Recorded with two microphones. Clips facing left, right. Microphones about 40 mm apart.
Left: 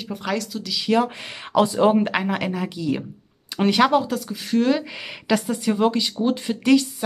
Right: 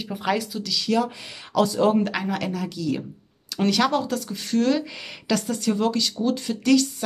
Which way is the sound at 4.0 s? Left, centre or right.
Centre.